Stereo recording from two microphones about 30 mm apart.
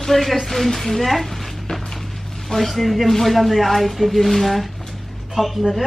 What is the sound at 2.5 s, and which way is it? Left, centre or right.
A man's voice, centre.